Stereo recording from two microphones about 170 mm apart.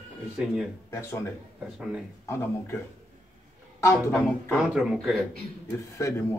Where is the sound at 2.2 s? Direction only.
15° left (ahead or behind).